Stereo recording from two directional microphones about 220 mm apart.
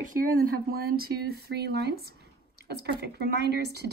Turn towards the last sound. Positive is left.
turn(degrees=-45)  # may be behind; listen again after turning